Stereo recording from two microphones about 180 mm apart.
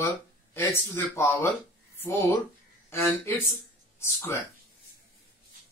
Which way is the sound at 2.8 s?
15° left (ahead or behind).